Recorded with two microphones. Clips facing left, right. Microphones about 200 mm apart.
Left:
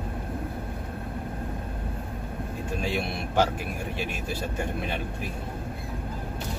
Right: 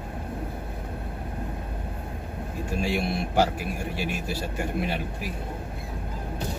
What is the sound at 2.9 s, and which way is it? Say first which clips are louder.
Speech: right 3 dB; 10° right (ahead or behind).